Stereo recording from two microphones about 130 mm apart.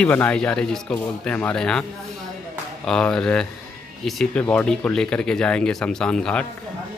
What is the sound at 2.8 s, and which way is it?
Speech, 5° left (ahead or behind).